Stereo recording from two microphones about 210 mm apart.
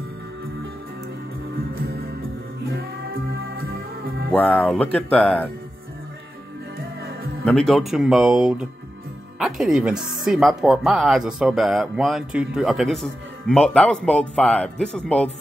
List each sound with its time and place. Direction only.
1.8 s music: 45° right (ahead or behind)
4.3 s speech: 5° left (ahead or behind)
7.4 s speech: centre (ahead or behind)